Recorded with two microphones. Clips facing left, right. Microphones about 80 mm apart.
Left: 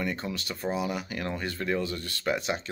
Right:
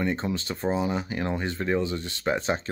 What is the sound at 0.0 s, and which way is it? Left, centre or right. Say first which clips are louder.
Speech: right 5 dB; right.